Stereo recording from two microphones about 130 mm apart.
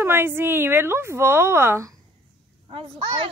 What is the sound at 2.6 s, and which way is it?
Speech, 45° right (ahead or behind).